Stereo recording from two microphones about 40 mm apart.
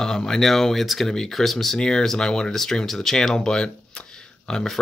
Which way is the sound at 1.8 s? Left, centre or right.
Left.